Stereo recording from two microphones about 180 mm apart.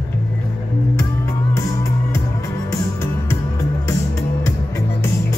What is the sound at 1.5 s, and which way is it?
Music, 15° left (ahead or behind).